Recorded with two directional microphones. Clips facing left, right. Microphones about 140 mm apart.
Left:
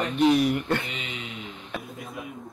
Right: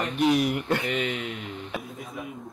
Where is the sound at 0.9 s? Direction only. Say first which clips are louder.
Right 9 dB; 55° right (ahead or behind).